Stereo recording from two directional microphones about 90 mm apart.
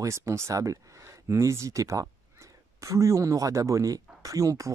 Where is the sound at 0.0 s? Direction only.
35° right (ahead or behind).